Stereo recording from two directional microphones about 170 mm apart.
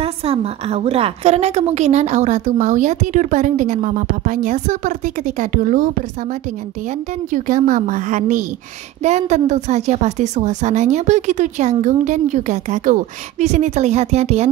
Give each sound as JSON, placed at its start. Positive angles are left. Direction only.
{"t": 0.0, "sound": "a woman's voice", "side_deg": -35}
{"t": 7.3, "sound": "a woman's voice", "side_deg": -50}